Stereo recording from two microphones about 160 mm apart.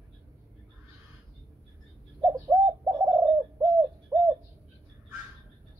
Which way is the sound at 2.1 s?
25° right (ahead or behind).